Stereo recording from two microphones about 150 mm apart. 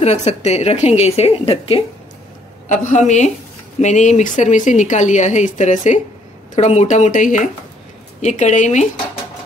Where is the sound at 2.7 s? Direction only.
55° left (ahead or behind).